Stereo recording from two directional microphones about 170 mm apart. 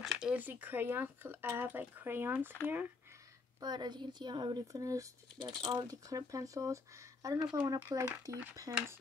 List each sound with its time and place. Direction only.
0.0 s speech: 5° right (ahead or behind)
3.6 s speech: 25° right (ahead or behind)
7.3 s speech: 5° right (ahead or behind)
7.6 s speech: 20° right (ahead or behind)
8.0 s speech: 10° right (ahead or behind)